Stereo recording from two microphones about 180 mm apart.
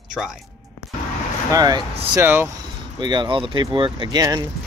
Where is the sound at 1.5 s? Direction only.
20° right (ahead or behind).